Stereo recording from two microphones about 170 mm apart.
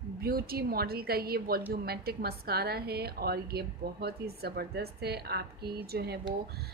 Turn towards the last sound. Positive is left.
turn(degrees=-65)  # may be behind; listen again after turning